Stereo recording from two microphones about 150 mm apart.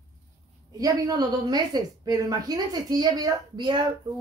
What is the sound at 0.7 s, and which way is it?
A woman's voice, 25° right (ahead or behind).